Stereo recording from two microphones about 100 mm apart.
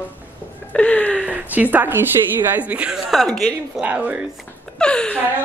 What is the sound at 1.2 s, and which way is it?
Speech, 15° right (ahead or behind).